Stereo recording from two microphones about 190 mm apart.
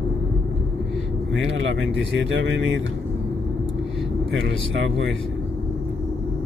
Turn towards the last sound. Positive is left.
turn(degrees=-75)  # may be behind; listen again after turning